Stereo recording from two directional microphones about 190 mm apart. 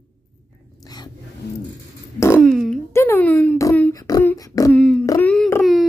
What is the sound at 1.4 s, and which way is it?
Pigeon, 60° left (ahead or behind).